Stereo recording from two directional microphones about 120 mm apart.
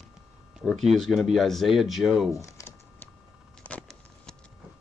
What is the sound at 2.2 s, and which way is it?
Typing, 25° left (ahead or behind).